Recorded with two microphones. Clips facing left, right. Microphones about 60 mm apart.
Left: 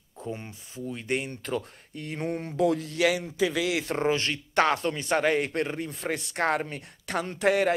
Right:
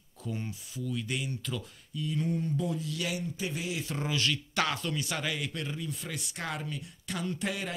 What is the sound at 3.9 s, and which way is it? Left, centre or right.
Speech, left.